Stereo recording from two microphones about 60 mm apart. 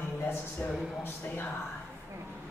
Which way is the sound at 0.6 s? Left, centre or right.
Left.